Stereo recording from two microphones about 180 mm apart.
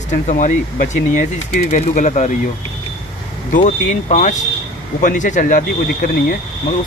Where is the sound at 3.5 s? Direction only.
40° left (ahead or behind).